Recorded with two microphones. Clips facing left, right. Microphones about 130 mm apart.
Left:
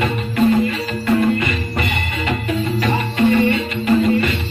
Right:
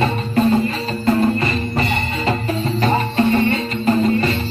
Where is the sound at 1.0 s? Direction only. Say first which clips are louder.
Even; 35° right (ahead or behind).